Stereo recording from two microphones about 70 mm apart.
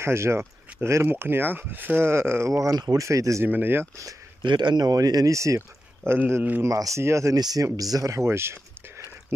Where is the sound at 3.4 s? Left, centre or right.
Right.